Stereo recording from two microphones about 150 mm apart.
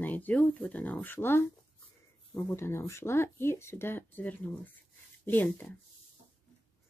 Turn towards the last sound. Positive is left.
turn(degrees=10)  # may be behind; listen again after turning